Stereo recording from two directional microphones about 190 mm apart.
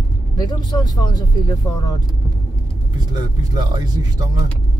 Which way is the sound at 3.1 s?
20° right (ahead or behind).